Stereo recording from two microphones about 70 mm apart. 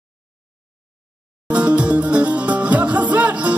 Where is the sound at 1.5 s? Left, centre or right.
Centre.